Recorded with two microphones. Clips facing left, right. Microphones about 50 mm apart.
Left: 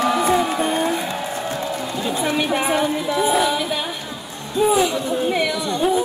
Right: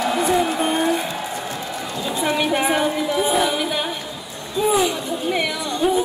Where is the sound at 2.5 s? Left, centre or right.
Centre.